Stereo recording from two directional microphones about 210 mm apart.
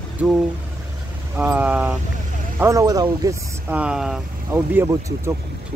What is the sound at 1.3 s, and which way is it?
Speech, 10° right (ahead or behind).